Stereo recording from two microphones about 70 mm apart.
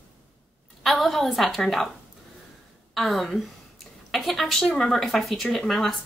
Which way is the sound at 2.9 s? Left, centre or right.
Centre.